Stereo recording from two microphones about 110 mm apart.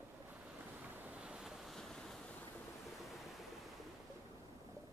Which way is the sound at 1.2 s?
5° right (ahead or behind).